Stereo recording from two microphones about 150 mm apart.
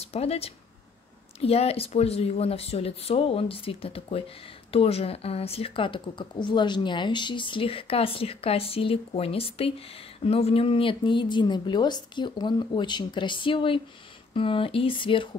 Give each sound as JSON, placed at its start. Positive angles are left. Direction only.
{"t": 0.0, "sound": "speech", "side_deg": 40}